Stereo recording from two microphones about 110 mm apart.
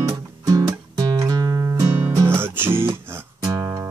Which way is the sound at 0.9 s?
40° right (ahead or behind).